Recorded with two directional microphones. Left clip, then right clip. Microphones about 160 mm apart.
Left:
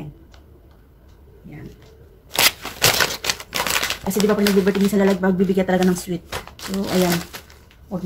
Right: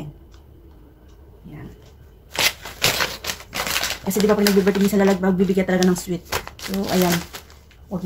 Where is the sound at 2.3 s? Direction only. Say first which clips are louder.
Left 3 dB; 60° left (ahead or behind).